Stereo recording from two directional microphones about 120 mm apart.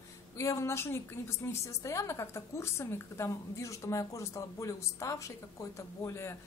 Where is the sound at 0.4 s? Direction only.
25° left (ahead or behind).